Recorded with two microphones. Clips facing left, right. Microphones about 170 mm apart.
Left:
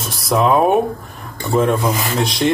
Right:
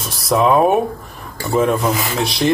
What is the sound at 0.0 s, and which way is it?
Speech, centre (ahead or behind).